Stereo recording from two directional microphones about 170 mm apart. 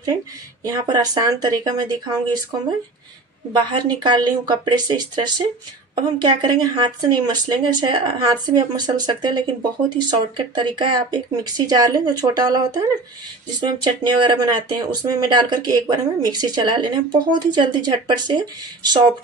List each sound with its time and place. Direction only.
0.7 s speech: 20° right (ahead or behind)
3.5 s speech: 25° right (ahead or behind)